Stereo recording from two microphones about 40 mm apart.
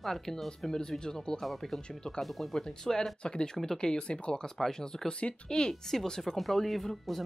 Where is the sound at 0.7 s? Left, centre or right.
Centre.